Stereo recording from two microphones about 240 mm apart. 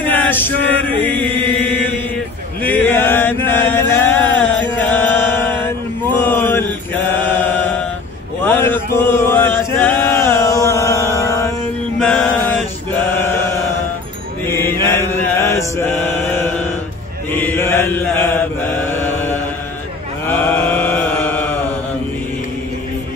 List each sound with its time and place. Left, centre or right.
0.0 s chant: centre
6.1 s mantra: centre
8.5 s chant: centre
14.4 s chant: centre
20.2 s mantra: centre